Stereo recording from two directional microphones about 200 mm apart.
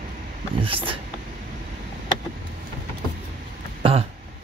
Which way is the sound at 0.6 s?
25° right (ahead or behind).